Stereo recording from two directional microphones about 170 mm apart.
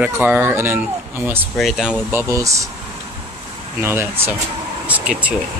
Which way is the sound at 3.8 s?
15° right (ahead or behind).